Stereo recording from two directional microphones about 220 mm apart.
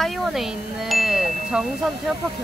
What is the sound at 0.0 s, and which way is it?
Speech, centre (ahead or behind).